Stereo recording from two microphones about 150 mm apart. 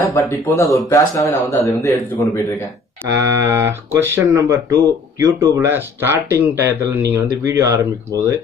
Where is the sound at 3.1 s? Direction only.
20° right (ahead or behind).